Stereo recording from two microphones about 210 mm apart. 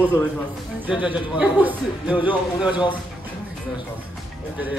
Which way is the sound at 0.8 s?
5° right (ahead or behind).